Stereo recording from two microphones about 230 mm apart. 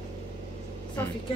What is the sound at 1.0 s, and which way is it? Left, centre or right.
Speech, centre.